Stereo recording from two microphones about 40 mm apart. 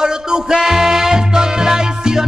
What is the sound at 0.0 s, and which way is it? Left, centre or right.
Music, centre.